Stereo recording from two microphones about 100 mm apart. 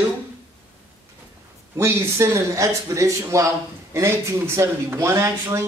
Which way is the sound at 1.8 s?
25° right (ahead or behind).